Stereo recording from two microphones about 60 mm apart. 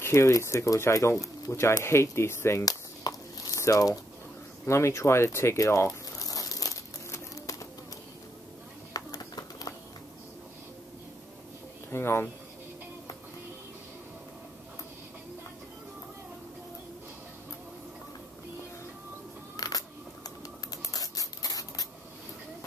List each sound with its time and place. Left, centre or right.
0.0 s speech: left
2.6 s a sound: left
4.6 s speech: left
6.1 s crumpling: left
7.1 s music: left
8.9 s a sound: left
11.9 s speech: left
19.5 s a sound: left
20.2 s scissors: left